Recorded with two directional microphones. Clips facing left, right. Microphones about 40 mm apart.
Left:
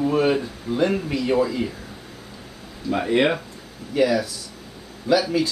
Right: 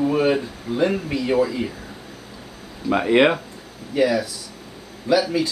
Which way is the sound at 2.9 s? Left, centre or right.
Right.